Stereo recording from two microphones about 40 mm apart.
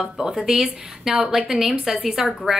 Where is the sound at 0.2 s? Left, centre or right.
Centre.